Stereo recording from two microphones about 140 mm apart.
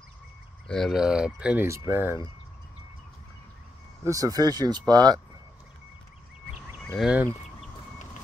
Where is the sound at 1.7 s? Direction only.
20° right (ahead or behind).